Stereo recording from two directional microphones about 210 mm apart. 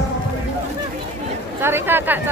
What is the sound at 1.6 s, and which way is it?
Speech, 10° right (ahead or behind).